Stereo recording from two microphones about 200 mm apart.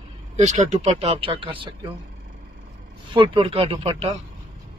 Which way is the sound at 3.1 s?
25° right (ahead or behind).